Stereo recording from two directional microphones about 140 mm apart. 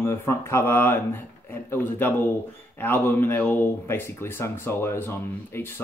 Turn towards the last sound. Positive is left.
turn(degrees=15)  # may be behind; listen again after turning